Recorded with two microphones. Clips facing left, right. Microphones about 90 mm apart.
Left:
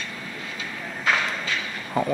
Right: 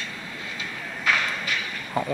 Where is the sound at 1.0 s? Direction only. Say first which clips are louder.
Left 1 dB; 20° left (ahead or behind).